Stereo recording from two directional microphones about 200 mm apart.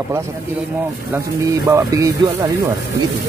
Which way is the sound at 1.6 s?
15° right (ahead or behind).